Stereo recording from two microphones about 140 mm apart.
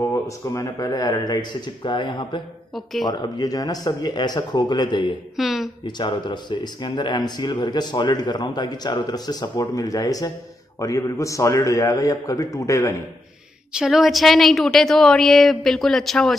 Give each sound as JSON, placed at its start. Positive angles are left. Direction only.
{"t": 0.0, "sound": "a man's voice", "side_deg": 20}
{"t": 2.7, "sound": "a woman's voice", "side_deg": 0}
{"t": 3.1, "sound": "a man's voice", "side_deg": 30}
{"t": 5.3, "sound": "a sound", "side_deg": 0}
{"t": 5.9, "sound": "a man's voice", "side_deg": 30}
{"t": 13.7, "sound": "a woman's voice", "side_deg": 0}